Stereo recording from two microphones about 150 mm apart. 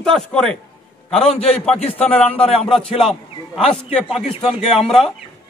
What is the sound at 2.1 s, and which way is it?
Speech, 5° left (ahead or behind).